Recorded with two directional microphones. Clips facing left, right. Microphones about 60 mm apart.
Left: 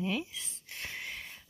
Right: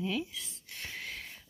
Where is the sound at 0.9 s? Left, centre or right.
Centre.